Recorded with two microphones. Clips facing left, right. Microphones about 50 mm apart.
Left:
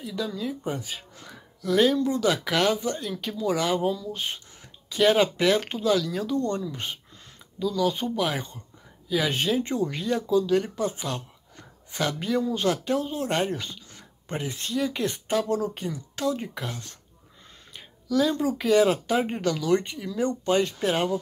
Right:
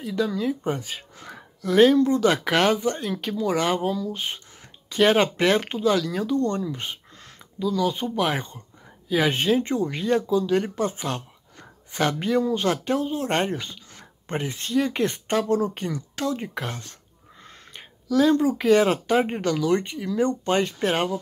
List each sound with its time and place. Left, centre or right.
0.0 s speech: right
6.7 s speech: right
13.5 s a sound: right
14.2 s speech: right
20.2 s speech: right